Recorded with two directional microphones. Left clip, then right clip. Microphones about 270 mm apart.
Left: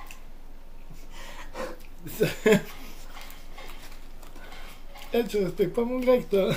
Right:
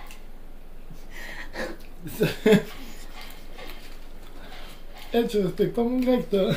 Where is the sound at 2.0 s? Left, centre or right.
Centre.